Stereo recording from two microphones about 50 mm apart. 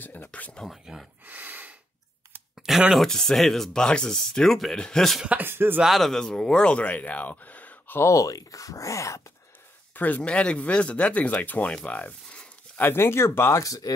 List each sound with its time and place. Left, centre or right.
0.0 s a sound: left
0.3 s speech: left
1.2 s gasp: right
2.5 s a sound: centre
3.0 s speech: centre
4.7 s speech: centre
5.3 s speech: right
5.9 s speech: centre; by 8.0 s left
8.0 s wail: left
9.9 s speech: left
10.2 s speech: left
12.9 s speech: left